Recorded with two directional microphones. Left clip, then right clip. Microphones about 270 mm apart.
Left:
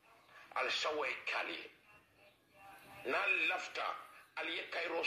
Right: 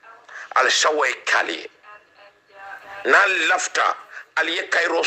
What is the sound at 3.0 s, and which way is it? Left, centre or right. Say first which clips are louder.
A man's voice: right 18 dB; right.